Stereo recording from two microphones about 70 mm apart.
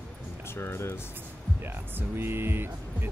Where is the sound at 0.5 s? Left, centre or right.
Left.